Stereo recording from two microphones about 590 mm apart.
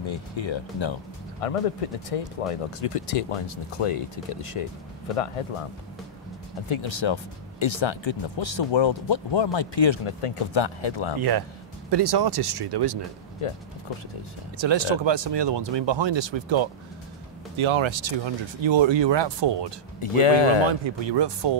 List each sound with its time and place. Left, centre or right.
0.1 s speech: left
1.4 s speech: left
6.7 s speech: left
11.1 s speech: right
13.4 s speech: left
14.6 s speech: right
20.0 s speech: left
20.8 s speech: right